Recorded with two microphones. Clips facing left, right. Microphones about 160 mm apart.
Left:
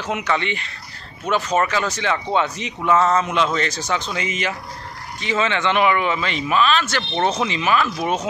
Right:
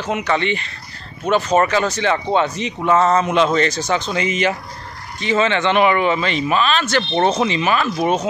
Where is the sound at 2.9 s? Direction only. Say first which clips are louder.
Right 2 dB; 40° right (ahead or behind).